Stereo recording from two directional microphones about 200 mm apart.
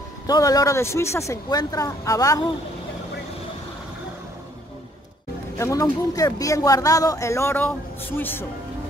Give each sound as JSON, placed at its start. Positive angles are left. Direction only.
{"t": 0.3, "sound": "speech", "side_deg": 15}
{"t": 5.6, "sound": "speech", "side_deg": 15}